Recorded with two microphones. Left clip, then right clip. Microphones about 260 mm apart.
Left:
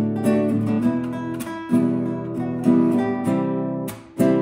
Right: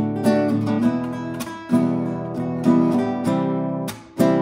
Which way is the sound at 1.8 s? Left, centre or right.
Right.